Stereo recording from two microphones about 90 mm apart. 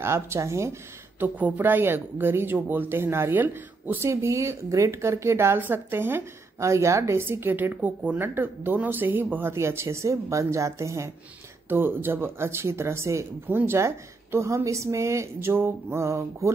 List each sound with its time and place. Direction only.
0.0 s a woman's voice: 30° right (ahead or behind)
1.2 s speech: 20° right (ahead or behind)
4.1 s speech: 35° right (ahead or behind)
11.7 s a woman's voice: 25° right (ahead or behind)